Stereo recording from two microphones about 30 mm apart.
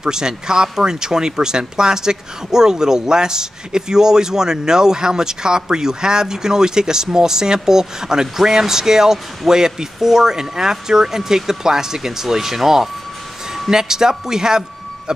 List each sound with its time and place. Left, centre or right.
0.0 s speech: right